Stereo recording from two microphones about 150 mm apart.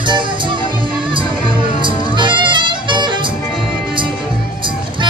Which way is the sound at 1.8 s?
30° right (ahead or behind).